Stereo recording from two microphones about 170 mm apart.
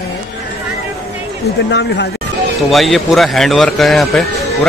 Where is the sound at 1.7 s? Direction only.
90° left.